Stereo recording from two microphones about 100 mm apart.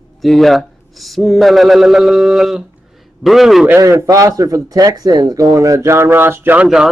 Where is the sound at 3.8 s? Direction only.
30° right (ahead or behind).